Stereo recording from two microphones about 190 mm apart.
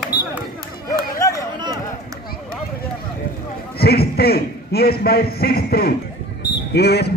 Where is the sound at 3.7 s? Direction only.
55° left (ahead or behind).